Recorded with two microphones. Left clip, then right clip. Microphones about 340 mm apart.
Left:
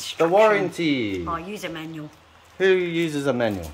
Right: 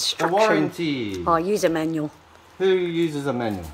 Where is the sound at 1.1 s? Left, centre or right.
Centre.